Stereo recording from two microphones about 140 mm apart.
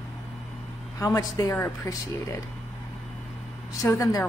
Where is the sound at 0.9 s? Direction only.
20° left (ahead or behind).